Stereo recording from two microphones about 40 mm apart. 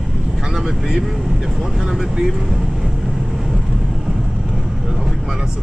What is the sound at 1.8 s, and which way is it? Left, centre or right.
Speech, centre.